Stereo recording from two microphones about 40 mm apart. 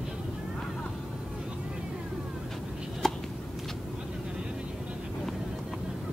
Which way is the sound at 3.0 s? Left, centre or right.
Centre.